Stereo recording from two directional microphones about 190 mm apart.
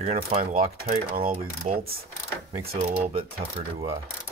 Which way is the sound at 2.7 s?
30° right (ahead or behind).